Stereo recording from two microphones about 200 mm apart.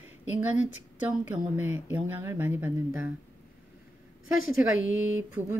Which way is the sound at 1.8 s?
10° right (ahead or behind).